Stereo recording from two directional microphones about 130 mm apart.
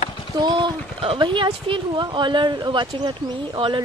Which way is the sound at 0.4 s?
35° right (ahead or behind).